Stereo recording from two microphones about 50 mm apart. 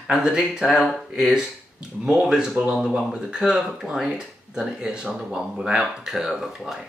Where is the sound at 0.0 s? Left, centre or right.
Centre.